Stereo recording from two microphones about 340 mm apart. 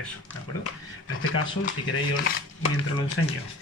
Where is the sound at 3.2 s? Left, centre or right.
Left.